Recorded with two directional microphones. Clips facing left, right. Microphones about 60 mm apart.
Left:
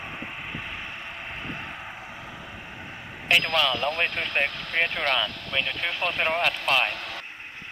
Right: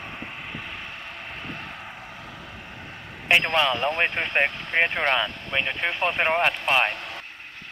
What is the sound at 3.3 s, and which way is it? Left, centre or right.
Speech, right.